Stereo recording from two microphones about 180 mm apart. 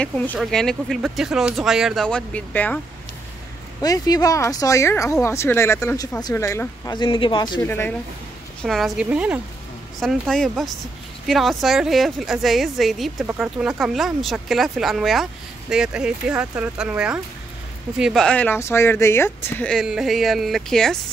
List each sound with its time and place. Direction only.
0.0 s a woman's voice: 5° left (ahead or behind)
3.8 s speech: 20° left (ahead or behind)
7.6 s speech: 10° left (ahead or behind)
8.6 s a woman's voice: centre (ahead or behind)